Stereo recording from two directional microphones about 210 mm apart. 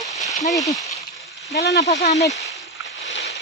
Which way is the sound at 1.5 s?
50° left (ahead or behind).